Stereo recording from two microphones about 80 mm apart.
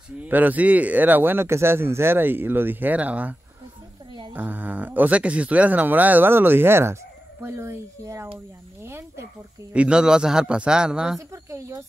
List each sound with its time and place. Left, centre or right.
0.2 s speech: right
8.8 s snake: right
9.7 s a man's voice: centre
11.1 s speech: right